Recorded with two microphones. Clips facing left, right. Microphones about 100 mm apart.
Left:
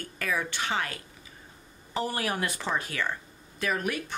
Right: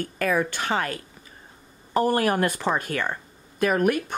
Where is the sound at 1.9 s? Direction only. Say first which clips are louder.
Right 9 dB; 50° right (ahead or behind).